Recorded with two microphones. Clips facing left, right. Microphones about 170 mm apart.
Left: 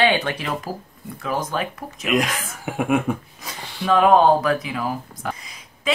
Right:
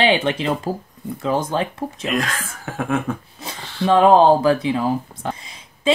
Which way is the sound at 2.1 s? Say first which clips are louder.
Left 3 dB; 15° left (ahead or behind).